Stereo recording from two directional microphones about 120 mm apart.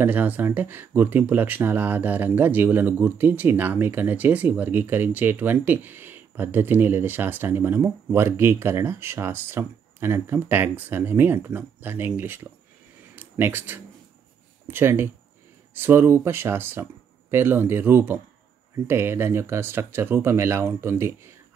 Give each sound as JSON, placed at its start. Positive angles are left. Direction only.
{"t": 0.0, "sound": "speech", "side_deg": -15}
{"t": 13.1, "sound": "a sound", "side_deg": -15}
{"t": 14.7, "sound": "speech", "side_deg": -20}